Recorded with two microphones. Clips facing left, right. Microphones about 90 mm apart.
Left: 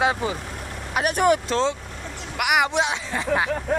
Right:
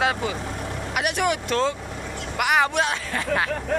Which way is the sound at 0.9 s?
35° left (ahead or behind).